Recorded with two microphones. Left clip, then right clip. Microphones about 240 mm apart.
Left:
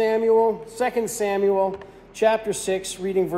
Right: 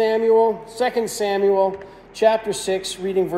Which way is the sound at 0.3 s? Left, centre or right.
Centre.